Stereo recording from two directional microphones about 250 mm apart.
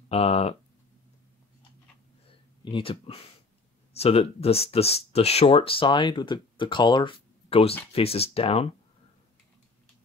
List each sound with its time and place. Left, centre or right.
0.1 s speech: left
2.6 s speech: left